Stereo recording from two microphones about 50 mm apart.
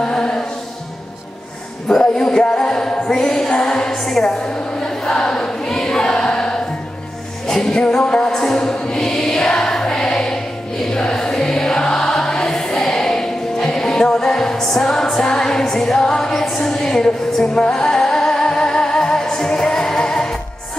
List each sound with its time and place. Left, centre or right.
0.0 s music: centre
1.9 s music: centre
3.4 s choir: centre
7.4 s music: centre